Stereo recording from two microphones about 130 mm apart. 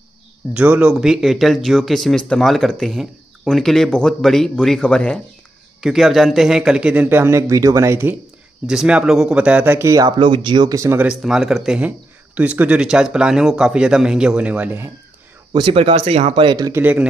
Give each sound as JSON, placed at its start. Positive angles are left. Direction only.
{"t": 0.5, "sound": "speech", "side_deg": -10}
{"t": 8.6, "sound": "speech", "side_deg": -5}
{"t": 10.1, "sound": "speech", "side_deg": -40}
{"t": 11.0, "sound": "speech", "side_deg": -5}
{"t": 15.5, "sound": "speech", "side_deg": -45}
{"t": 16.4, "sound": "speech", "side_deg": -35}
{"t": 16.7, "sound": "speech", "side_deg": -10}